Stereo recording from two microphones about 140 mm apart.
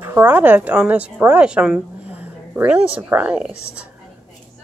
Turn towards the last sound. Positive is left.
turn(degrees=-5)  # may be behind; listen again after turning